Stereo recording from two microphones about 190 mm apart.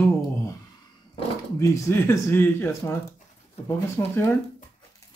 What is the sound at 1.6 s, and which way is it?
Speech, 15° left (ahead or behind).